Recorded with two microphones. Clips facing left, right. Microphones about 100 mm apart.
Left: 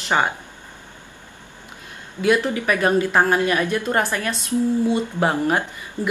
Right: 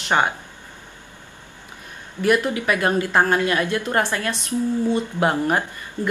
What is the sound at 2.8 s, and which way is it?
Speech, 15° left (ahead or behind).